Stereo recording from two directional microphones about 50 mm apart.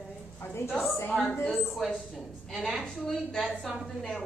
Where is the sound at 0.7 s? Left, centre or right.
Centre.